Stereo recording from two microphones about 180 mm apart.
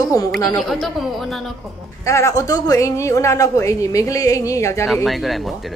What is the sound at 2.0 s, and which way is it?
A woman's voice, 15° left (ahead or behind).